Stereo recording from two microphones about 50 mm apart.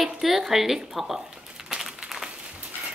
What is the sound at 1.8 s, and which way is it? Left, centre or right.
Crumpling, centre.